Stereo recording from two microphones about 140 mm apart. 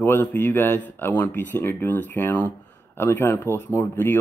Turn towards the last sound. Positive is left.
turn(degrees=15)  # may be behind; listen again after turning